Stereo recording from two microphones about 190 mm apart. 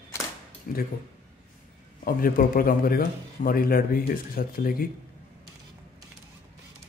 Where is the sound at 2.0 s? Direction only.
50° left (ahead or behind).